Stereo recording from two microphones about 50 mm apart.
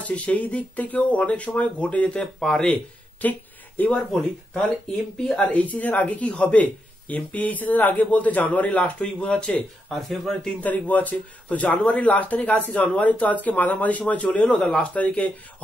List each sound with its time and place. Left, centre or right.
0.0 s speech: left
3.3 s a sound: left
3.9 s speech: centre
5.3 s speech: left
9.9 s speech: centre
10.6 s speech: left